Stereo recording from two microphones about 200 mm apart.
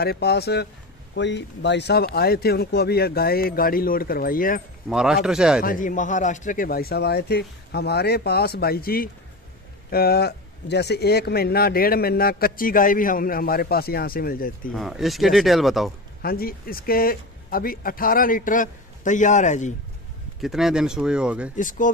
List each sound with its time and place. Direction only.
0.0 s speech: 55° left (ahead or behind)
4.8 s speech: centre (ahead or behind)
5.6 s speech: 45° left (ahead or behind)
14.7 s speech: centre (ahead or behind)
16.2 s speech: 50° left (ahead or behind)
20.4 s speech: centre (ahead or behind)
21.5 s speech: 40° left (ahead or behind)